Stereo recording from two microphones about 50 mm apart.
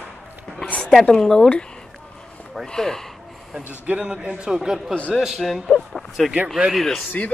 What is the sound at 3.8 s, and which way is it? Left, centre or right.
Speech, right.